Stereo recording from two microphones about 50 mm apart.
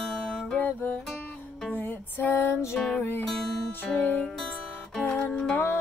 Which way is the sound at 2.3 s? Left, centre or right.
Left.